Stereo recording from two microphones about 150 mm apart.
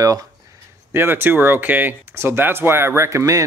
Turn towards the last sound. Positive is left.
turn(degrees=-20)  # may be behind; listen again after turning